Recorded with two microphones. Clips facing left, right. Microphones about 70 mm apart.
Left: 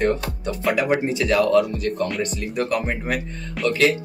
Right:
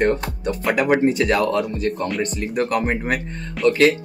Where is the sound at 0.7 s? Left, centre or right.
Right.